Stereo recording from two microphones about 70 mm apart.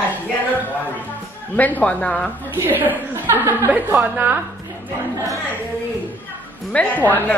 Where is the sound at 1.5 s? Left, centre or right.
Left.